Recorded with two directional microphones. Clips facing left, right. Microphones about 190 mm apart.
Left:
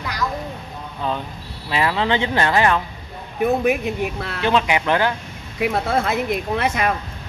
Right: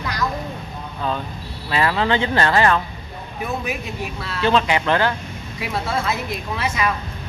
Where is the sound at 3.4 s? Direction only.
60° left (ahead or behind).